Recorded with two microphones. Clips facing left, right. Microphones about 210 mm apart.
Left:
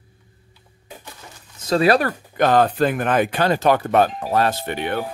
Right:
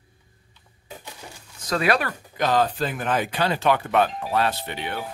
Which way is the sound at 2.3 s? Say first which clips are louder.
Left 5 dB; 55° left (ahead or behind).